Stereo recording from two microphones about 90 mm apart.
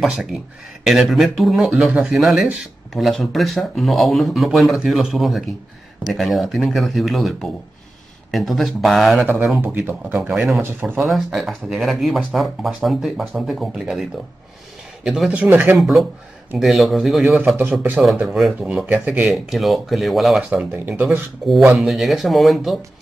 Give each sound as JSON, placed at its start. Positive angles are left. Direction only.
{"t": 0.0, "sound": "speech", "side_deg": -5}
{"t": 9.2, "sound": "speech", "side_deg": -25}
{"t": 10.3, "sound": "speech", "side_deg": -5}
{"t": 10.6, "sound": "speech", "side_deg": -25}
{"t": 11.2, "sound": "speech", "side_deg": -5}
{"t": 15.0, "sound": "speech", "side_deg": -5}
{"t": 15.3, "sound": "speech", "side_deg": -20}
{"t": 15.8, "sound": "speech", "side_deg": 0}
{"t": 17.6, "sound": "speech", "side_deg": -20}
{"t": 18.2, "sound": "speech", "side_deg": -5}
{"t": 18.9, "sound": "speech", "side_deg": -15}
{"t": 19.2, "sound": "speech", "side_deg": 0}
{"t": 21.5, "sound": "speech", "side_deg": 0}